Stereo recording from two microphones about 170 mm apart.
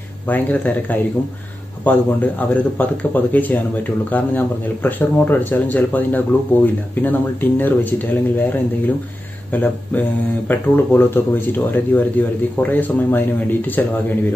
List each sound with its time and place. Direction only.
0.3 s speech: 10° left (ahead or behind)